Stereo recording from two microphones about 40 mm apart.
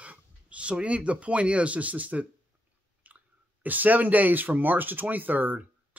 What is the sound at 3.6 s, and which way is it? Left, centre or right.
Speech, right.